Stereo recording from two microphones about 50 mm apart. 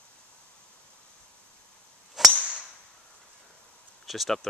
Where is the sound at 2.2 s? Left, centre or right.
Centre.